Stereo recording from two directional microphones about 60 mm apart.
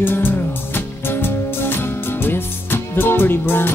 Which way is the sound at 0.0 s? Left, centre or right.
Left.